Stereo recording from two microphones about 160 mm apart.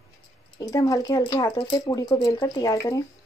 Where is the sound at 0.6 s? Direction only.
20° left (ahead or behind).